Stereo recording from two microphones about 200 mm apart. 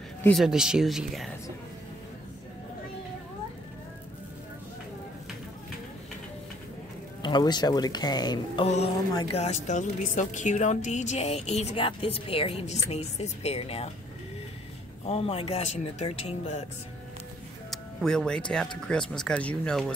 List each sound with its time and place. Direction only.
0.2 s speech: centre (ahead or behind)
7.2 s speech: 20° left (ahead or behind)
8.6 s a woman's voice: 35° left (ahead or behind)
9.1 s speech: 20° left (ahead or behind)
9.4 s a woman's voice: 35° left (ahead or behind)
15.0 s a woman's voice: 30° left (ahead or behind)
17.6 s music: 5° left (ahead or behind)
18.9 s speech: 5° left (ahead or behind)